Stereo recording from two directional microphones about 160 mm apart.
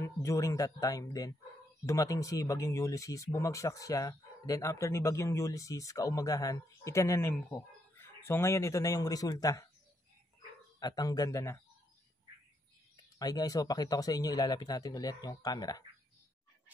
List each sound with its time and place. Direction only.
0.0 s speech: 20° left (ahead or behind)
10.8 s speech: 25° left (ahead or behind)
12.9 s speech: 25° left (ahead or behind)